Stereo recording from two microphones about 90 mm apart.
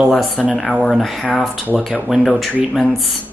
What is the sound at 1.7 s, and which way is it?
Speech, 10° right (ahead or behind).